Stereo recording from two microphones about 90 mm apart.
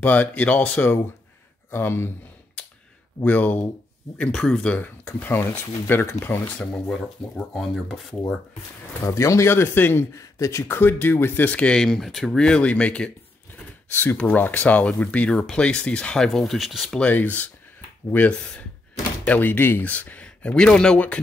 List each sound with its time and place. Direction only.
0.0 s speech: 20° left (ahead or behind)
1.7 s speech: 25° left (ahead or behind)
3.3 s speech: 20° left (ahead or behind)
4.2 s speech: 10° left (ahead or behind); by 6.4 s 25° left (ahead or behind)
6.4 s speech: 10° left (ahead or behind)
9.0 s speech: 35° left (ahead or behind); by 17.0 s centre (ahead or behind)
17.0 s speech: 15° left (ahead or behind)